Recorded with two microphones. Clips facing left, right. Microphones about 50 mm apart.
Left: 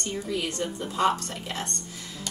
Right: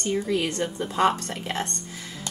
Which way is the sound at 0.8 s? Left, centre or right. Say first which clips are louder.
Right 2 dB; right.